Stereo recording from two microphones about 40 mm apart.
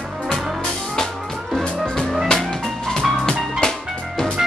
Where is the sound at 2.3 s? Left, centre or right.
Left.